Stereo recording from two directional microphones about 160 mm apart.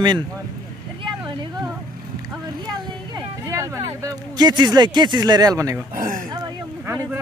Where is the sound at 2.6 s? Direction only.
20° right (ahead or behind).